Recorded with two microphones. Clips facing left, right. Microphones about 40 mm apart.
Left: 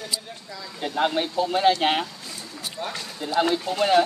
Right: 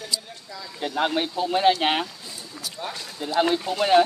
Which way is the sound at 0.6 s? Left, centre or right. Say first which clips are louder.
Left 1 dB; centre.